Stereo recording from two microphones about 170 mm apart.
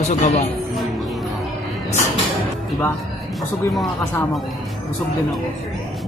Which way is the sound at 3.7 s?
Centre (ahead or behind).